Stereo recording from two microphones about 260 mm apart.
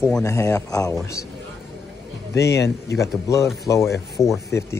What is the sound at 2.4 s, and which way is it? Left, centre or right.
Speech, left.